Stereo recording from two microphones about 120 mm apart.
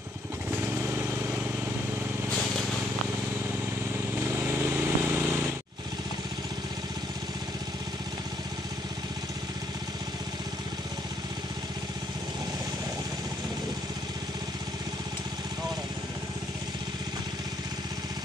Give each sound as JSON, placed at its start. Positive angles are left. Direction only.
{"t": 4.4, "sound": "vehicle", "side_deg": -20}